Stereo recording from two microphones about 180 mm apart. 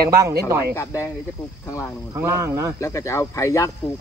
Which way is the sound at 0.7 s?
15° left (ahead or behind).